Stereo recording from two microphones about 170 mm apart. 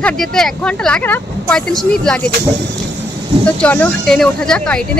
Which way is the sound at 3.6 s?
5° left (ahead or behind).